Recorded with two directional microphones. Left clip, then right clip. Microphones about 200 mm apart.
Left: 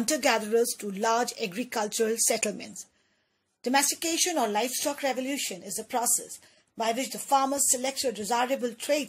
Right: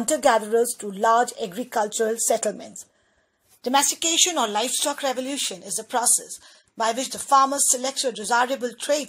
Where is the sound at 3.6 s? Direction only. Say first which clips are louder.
Right 5 dB; 5° left (ahead or behind).